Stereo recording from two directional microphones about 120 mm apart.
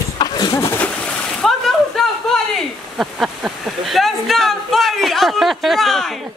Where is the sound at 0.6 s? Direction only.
20° left (ahead or behind).